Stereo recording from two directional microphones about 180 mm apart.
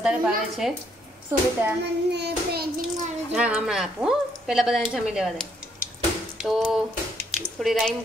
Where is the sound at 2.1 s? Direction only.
65° right (ahead or behind).